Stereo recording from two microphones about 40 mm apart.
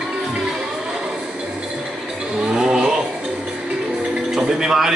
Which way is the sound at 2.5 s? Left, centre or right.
Centre.